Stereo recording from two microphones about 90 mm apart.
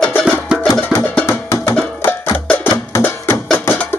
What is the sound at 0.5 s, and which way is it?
Music, 10° right (ahead or behind).